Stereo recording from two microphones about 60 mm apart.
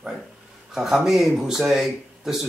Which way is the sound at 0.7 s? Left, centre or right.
Centre.